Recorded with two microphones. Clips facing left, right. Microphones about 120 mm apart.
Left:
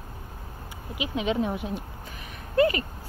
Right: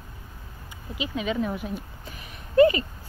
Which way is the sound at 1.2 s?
20° left (ahead or behind).